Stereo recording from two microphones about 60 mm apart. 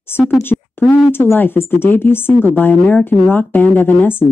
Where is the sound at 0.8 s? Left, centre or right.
Left.